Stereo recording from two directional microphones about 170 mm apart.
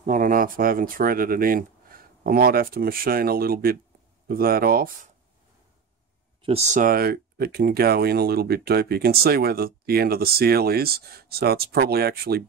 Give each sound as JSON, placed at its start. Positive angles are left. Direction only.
{"t": 0.0, "sound": "speech", "side_deg": -50}
{"t": 6.4, "sound": "speech", "side_deg": -40}